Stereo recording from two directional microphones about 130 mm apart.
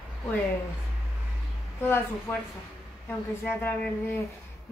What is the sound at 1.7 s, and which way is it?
Speech, 15° left (ahead or behind).